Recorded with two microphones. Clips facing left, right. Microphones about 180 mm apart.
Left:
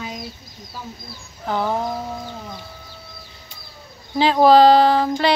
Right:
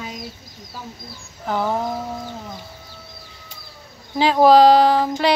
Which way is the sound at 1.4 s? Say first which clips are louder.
Even; 5° right (ahead or behind).